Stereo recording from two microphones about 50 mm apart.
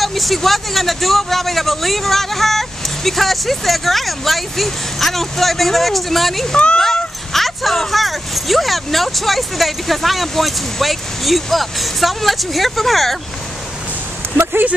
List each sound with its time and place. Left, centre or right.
0.0 s a man's voice: centre
6.5 s speech: left
6.8 s a man's voice: centre
14.3 s speech: right